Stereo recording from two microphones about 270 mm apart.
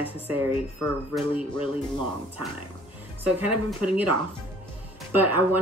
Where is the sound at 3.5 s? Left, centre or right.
Centre.